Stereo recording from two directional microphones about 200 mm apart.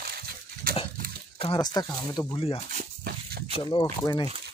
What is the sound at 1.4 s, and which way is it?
Speech, 25° left (ahead or behind).